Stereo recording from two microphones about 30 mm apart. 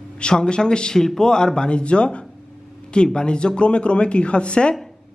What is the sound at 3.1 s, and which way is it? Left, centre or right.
A man's voice, left.